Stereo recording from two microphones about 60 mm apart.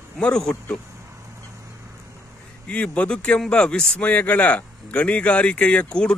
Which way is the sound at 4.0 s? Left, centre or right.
Left.